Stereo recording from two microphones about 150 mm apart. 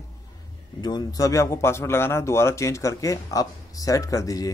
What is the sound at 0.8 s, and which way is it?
Speech, 25° left (ahead or behind).